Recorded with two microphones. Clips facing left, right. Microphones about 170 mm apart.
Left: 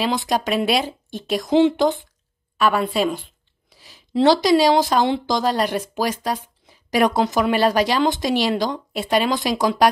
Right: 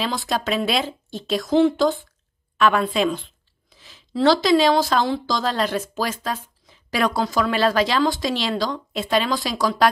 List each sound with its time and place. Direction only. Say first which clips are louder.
0.0 s speech: left 3 dB; 15° left (ahead or behind)
2.5 s speech: even; 10° left (ahead or behind)
3.7 s a sound: left 1 dB; 10° left (ahead or behind)
4.1 s a woman's voice: left 2 dB; 20° left (ahead or behind)